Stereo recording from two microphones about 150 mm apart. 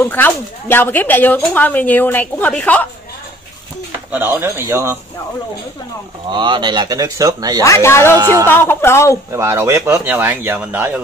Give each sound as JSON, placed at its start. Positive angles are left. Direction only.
{"t": 0.0, "sound": "speech", "side_deg": 15}
{"t": 4.1, "sound": "speech", "side_deg": -15}
{"t": 6.3, "sound": "speech", "side_deg": -30}
{"t": 7.6, "sound": "speech", "side_deg": 20}
{"t": 8.2, "sound": "speech", "side_deg": -25}
{"t": 8.5, "sound": "speech", "side_deg": 15}
{"t": 9.3, "sound": "speech", "side_deg": -20}